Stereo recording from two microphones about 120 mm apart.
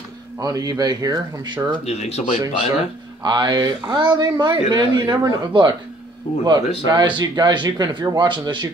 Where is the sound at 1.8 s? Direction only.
65° left (ahead or behind).